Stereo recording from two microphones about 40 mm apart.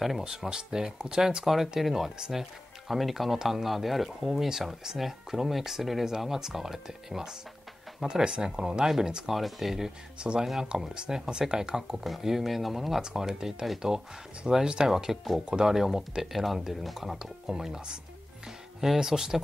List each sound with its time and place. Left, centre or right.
0.2 s speech: centre
9.2 s speech: centre
12.0 s speech: centre
13.0 s speech: centre
14.9 s speech: centre
15.4 s speech: centre